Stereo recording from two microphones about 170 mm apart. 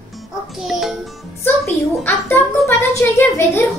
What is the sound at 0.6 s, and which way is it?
Speech, centre (ahead or behind).